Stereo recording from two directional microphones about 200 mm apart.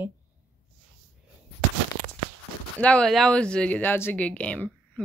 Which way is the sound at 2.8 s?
5° left (ahead or behind).